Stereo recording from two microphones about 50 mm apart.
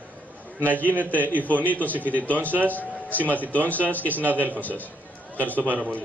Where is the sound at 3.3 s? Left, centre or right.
Right.